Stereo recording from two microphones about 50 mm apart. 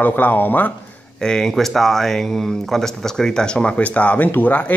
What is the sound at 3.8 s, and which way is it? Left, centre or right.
Speech, left.